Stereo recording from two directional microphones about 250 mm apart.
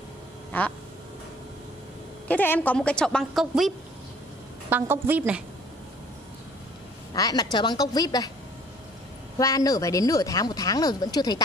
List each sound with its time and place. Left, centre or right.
0.5 s quack: centre
2.2 s a woman's voice: centre
7.2 s speech: centre
9.4 s speech: centre